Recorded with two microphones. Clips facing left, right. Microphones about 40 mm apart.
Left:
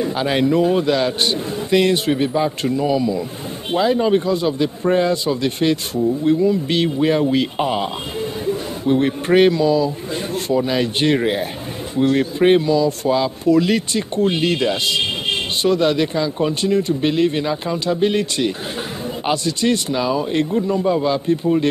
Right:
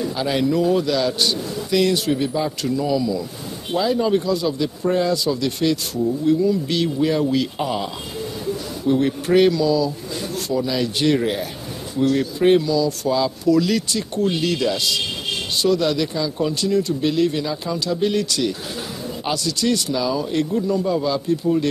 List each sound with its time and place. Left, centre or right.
0.0 s speech: left